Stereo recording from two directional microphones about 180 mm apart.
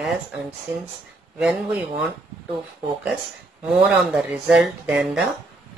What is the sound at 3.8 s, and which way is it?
Speech, 5° right (ahead or behind).